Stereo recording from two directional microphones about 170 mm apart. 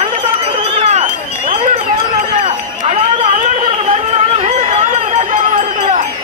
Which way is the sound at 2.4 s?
45° right (ahead or behind).